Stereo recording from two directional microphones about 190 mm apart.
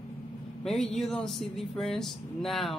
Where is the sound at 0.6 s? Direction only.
Centre (ahead or behind).